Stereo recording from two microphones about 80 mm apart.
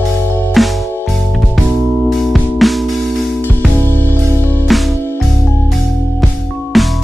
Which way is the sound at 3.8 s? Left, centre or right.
Left.